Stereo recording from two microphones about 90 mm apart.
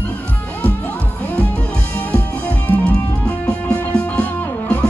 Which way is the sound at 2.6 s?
20° left (ahead or behind).